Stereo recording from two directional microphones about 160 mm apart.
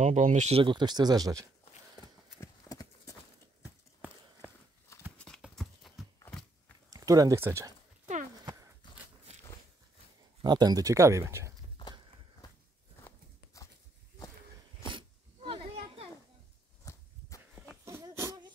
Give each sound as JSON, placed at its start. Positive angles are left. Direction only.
{"t": 0.0, "sound": "speech", "side_deg": -50}
{"t": 2.4, "sound": "clip-clop", "side_deg": 20}
{"t": 4.9, "sound": "clip-clop", "side_deg": 20}
{"t": 5.2, "sound": "horse", "side_deg": 5}
{"t": 6.1, "sound": "a sound", "side_deg": 10}
{"t": 6.9, "sound": "speech", "side_deg": -20}
{"t": 10.4, "sound": "speech", "side_deg": -25}
{"t": 11.8, "sound": "horse", "side_deg": 30}
{"t": 13.0, "sound": "a sound", "side_deg": 20}
{"t": 14.8, "sound": "sneeze", "side_deg": -30}
{"t": 16.9, "sound": "walk", "side_deg": 20}
{"t": 17.8, "sound": "a sound", "side_deg": -15}